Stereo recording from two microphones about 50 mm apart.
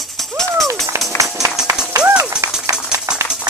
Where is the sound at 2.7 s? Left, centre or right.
Right.